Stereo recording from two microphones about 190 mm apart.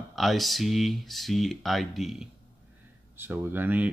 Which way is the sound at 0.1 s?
Centre (ahead or behind).